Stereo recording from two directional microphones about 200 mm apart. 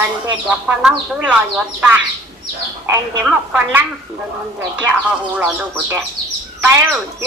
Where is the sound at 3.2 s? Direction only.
10° right (ahead or behind).